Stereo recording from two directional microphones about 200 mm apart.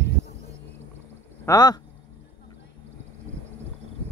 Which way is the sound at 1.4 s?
20° left (ahead or behind).